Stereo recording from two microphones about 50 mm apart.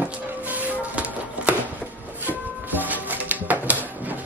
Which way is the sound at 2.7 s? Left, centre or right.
Right.